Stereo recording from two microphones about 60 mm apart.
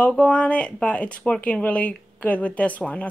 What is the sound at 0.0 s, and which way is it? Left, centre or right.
Speech, centre.